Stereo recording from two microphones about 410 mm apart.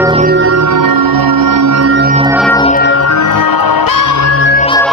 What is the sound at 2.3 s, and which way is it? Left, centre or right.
Music, centre.